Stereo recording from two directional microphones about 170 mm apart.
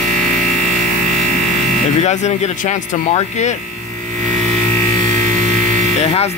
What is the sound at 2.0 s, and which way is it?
Speech, 40° left (ahead or behind).